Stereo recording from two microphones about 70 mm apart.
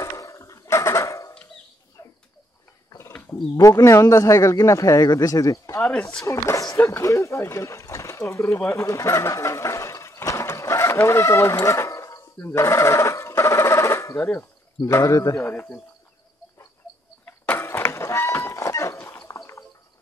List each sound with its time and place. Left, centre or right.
0.0 s a sound: left
2.0 s bird: left
3.0 s wild animals: left
3.5 s speech: left
6.8 s speech: left
7.1 s speech: left
8.8 s a sound: left
12.4 s a sound: left
14.9 s speech: left
15.4 s speech: left
17.6 s a sound: left
19.0 s dog: left